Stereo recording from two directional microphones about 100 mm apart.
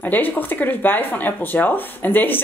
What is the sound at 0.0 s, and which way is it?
Speech, 15° left (ahead or behind).